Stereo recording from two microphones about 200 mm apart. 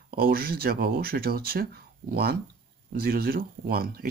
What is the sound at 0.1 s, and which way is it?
A man's voice, 50° right (ahead or behind).